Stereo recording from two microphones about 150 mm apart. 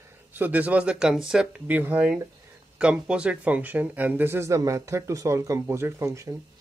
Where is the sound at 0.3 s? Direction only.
10° right (ahead or behind).